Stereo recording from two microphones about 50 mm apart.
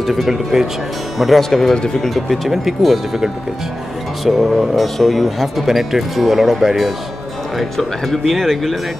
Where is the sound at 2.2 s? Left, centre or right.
Centre.